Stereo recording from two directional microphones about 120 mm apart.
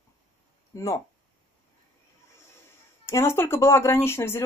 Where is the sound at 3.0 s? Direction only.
20° left (ahead or behind).